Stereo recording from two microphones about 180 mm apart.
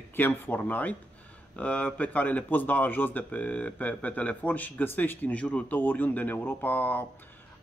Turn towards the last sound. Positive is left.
turn(degrees=10)  # may be behind; listen again after turning